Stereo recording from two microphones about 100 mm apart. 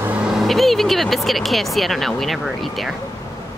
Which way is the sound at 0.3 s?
Centre (ahead or behind).